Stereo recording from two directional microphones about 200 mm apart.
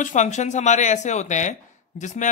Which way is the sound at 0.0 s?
35° left (ahead or behind).